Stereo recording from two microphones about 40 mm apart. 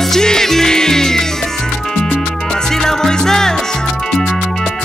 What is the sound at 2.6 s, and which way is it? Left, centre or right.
Music, centre.